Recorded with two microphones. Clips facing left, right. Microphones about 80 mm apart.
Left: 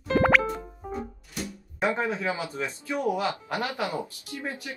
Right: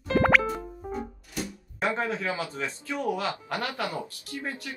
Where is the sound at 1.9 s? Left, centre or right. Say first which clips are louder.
Left 1 dB; centre.